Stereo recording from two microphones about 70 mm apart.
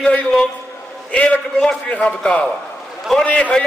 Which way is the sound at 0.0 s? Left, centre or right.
Centre.